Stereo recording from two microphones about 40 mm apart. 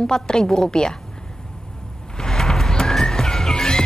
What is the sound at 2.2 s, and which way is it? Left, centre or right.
Music, centre.